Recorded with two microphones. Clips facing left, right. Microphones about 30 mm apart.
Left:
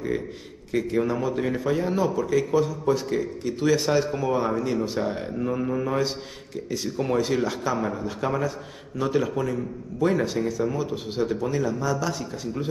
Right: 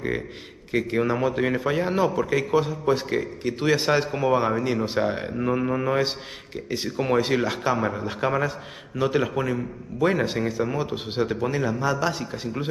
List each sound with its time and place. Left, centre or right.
0.7 s a man's voice: right